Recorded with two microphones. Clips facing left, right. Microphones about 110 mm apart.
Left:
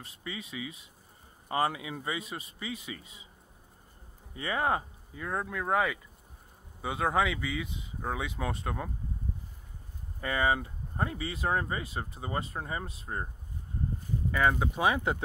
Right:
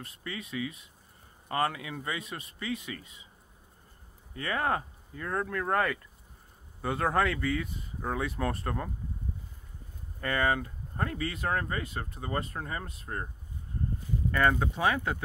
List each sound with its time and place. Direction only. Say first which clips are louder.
0.2 s speech: right 3 dB; 15° left (ahead or behind)
2.3 s speech: right 3 dB; 5° left (ahead or behind)
4.4 s speech: even; 15° left (ahead or behind)
10.2 s speech: even; 10° left (ahead or behind)
14.3 s speech: right 1 dB; 5° left (ahead or behind)